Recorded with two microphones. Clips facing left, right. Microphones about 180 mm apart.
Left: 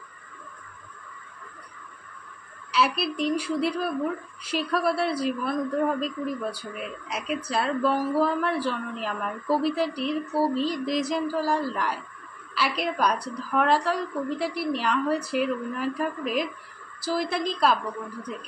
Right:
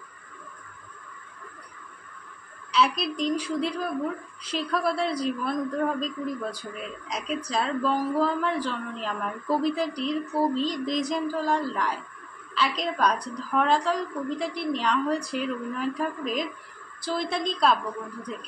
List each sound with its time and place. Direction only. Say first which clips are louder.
2.7 s a woman's voice: even; 5° left (ahead or behind)